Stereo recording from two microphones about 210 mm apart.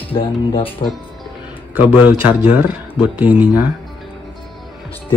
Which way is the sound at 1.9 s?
5° right (ahead or behind).